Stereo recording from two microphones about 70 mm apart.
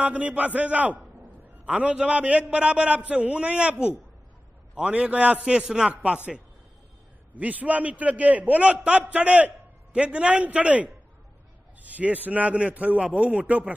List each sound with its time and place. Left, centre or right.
0.0 s a man's voice: centre